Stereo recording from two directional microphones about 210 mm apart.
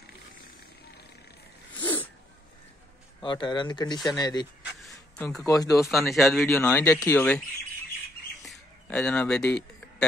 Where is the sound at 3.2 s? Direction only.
25° left (ahead or behind).